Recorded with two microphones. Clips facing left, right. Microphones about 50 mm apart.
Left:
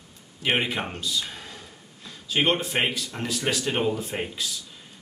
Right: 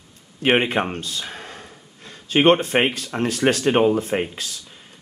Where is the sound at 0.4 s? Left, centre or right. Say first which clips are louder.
Right 7 dB; right.